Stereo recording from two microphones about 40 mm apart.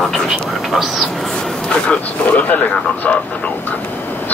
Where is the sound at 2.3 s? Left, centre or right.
Left.